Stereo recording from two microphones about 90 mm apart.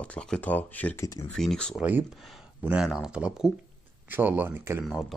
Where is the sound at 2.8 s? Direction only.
5° right (ahead or behind).